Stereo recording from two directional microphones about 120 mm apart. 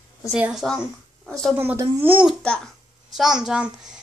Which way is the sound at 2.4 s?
10° left (ahead or behind).